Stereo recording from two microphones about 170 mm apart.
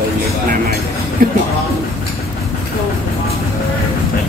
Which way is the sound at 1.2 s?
60° right (ahead or behind).